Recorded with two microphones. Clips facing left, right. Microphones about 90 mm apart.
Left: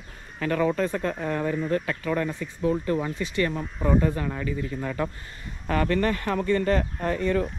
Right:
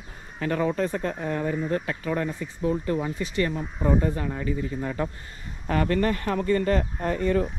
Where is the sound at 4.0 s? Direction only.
65° left (ahead or behind).